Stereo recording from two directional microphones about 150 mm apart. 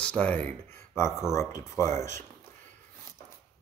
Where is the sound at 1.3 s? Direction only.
20° left (ahead or behind).